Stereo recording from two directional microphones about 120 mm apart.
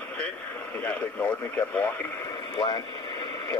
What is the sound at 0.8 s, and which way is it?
Speech, 15° left (ahead or behind).